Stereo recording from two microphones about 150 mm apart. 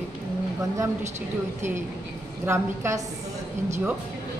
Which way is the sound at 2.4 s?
20° right (ahead or behind).